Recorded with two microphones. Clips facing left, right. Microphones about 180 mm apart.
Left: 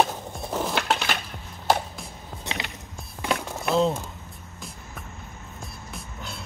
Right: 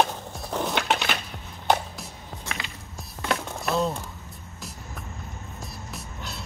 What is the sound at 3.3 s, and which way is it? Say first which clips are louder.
Music: left 1 dB; centre (ahead or behind).